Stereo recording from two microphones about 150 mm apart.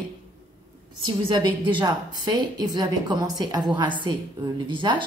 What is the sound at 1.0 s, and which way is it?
A woman's voice, 30° right (ahead or behind).